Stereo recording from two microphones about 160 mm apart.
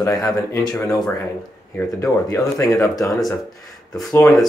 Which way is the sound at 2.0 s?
20° left (ahead or behind).